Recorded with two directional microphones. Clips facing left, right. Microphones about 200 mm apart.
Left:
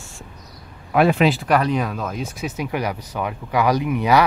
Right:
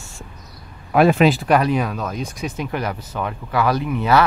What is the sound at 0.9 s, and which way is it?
Speech, 45° right (ahead or behind).